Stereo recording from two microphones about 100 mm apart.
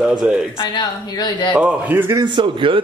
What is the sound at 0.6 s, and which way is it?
Speech, 45° left (ahead or behind).